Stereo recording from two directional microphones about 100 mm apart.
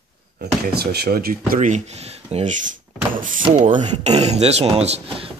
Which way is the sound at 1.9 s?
90° right.